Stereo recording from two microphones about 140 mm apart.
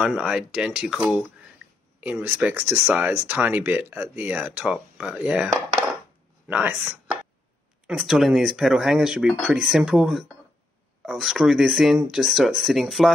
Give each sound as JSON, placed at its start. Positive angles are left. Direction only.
{"t": 0.0, "sound": "speech", "side_deg": -5}